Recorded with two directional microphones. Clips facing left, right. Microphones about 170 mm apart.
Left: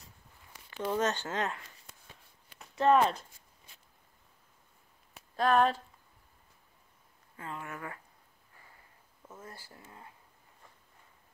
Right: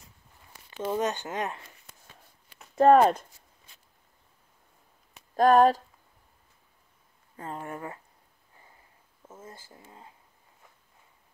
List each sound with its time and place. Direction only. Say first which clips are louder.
0.7 s speech: right 2 dB; 20° right (ahead or behind)
2.7 s speech: right 7 dB; 45° right (ahead or behind)
5.3 s speech: right 7 dB; 40° right (ahead or behind)
7.3 s speech: right 5 dB; 40° right (ahead or behind)
9.3 s speech: right 2 dB; 20° right (ahead or behind)